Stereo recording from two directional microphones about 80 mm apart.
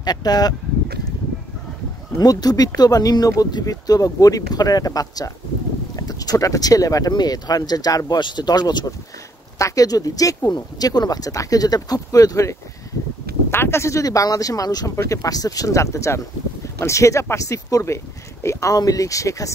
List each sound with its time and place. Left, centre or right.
0.0 s speech: left
2.1 s speech: left
8.2 s speech: left
9.6 s speech: left
13.5 s speech: left